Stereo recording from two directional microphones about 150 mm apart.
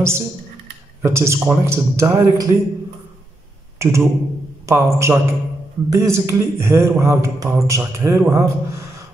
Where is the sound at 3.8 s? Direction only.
20° right (ahead or behind).